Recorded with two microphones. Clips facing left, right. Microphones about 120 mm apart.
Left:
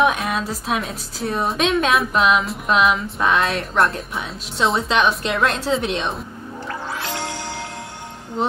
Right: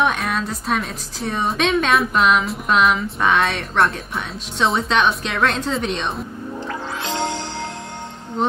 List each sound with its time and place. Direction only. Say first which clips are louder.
0.0 s a woman's voice: left 1 dB; centre (ahead or behind)
7.0 s music: right 4 dB; 20° right (ahead or behind)
8.4 s a woman's voice: right 1 dB; centre (ahead or behind)